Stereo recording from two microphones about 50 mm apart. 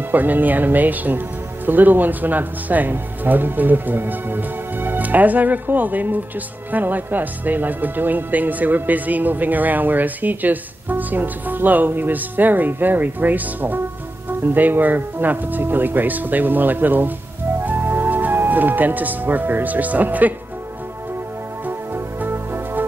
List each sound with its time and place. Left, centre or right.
0.1 s speech: right
21.6 s music: right